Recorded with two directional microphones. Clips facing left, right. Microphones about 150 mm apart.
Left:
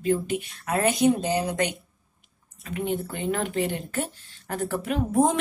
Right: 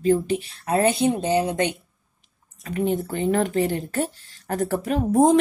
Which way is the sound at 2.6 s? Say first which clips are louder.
Right 4 dB; 40° right (ahead or behind).